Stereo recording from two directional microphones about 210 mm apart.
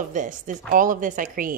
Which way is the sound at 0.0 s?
35° right (ahead or behind).